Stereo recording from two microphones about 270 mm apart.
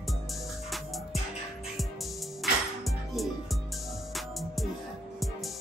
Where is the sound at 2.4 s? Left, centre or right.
Centre.